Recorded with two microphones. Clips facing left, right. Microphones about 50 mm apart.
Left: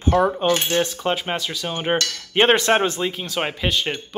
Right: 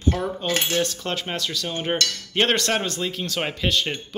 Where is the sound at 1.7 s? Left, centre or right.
Left.